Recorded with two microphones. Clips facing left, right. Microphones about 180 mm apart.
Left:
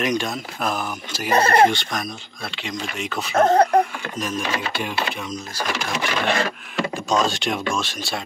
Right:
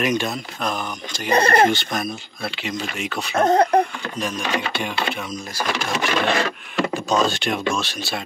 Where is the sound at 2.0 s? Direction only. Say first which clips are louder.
Right 3 dB; 5° right (ahead or behind).